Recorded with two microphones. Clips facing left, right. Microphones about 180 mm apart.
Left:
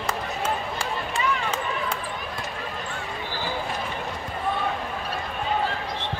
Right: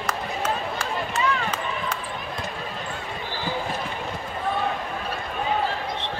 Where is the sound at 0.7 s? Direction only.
30° left (ahead or behind).